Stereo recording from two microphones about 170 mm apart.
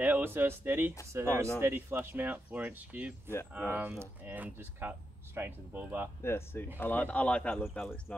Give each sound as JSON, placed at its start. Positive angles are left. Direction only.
{"t": 0.0, "sound": "speech", "side_deg": -10}
{"t": 6.2, "sound": "speech", "side_deg": 15}